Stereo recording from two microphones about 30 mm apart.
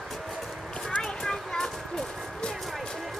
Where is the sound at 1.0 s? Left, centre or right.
Centre.